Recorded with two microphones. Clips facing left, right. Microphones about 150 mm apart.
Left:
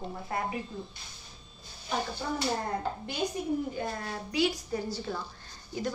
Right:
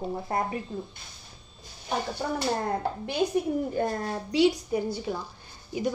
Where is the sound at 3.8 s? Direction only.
55° right (ahead or behind).